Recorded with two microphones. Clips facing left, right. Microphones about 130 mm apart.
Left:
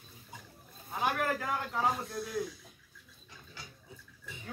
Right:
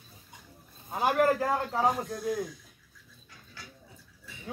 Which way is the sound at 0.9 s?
35° right (ahead or behind).